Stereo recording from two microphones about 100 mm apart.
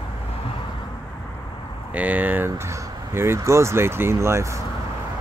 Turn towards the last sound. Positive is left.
turn(degrees=-25)  # may be behind; listen again after turning